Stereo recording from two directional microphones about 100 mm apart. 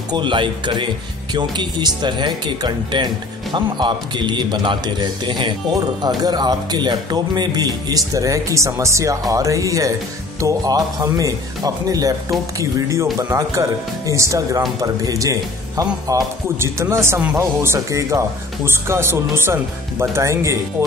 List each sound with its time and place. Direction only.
0.1 s a man's voice: 50° right (ahead or behind); by 16.3 s 35° right (ahead or behind)
16.9 s speech: 25° right (ahead or behind)